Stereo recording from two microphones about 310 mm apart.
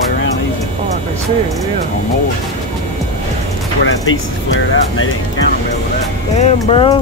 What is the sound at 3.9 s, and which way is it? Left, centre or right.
Speech, left.